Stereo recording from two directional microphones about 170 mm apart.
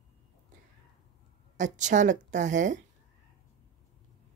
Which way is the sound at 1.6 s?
45° right (ahead or behind).